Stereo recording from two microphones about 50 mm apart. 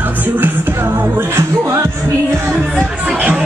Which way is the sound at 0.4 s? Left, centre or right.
Right.